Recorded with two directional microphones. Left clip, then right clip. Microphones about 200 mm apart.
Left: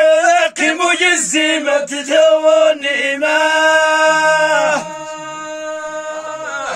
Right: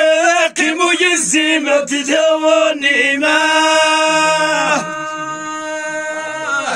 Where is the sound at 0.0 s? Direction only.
20° left (ahead or behind).